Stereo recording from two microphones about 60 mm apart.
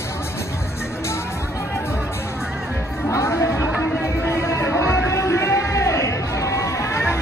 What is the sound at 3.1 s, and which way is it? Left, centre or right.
Chatter, left.